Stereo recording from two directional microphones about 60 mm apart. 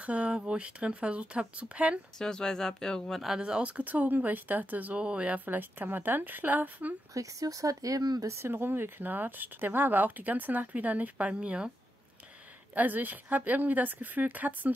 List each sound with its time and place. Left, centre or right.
0.0 s speech: right
2.1 s speech: centre
3.3 s speech: centre
7.2 s speech: right
8.3 s speech: right; by 11.7 s centre
12.7 s speech: right